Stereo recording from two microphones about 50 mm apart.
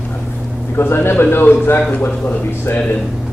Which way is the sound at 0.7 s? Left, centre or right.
Left.